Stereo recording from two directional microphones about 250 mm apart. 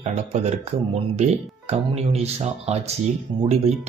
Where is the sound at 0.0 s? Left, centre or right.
Right.